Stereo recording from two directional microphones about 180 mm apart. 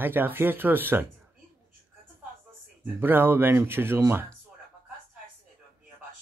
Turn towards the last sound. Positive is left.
turn(degrees=-10)  # may be behind; listen again after turning